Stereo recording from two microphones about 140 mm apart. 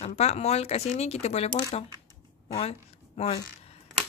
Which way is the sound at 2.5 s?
45° left (ahead or behind).